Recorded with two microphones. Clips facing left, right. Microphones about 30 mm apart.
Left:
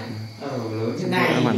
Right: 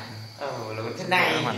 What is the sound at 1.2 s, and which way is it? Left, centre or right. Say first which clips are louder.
Speech: left 4 dB; left.